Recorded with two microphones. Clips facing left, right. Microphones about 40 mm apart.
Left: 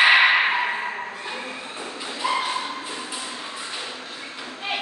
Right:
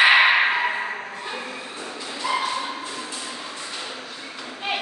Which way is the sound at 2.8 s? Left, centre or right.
Centre.